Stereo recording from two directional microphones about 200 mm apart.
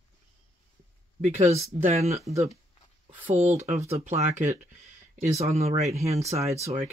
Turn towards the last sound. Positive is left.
turn(degrees=-30)  # may be behind; listen again after turning